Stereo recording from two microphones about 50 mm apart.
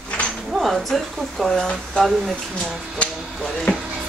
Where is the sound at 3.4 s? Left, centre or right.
Centre.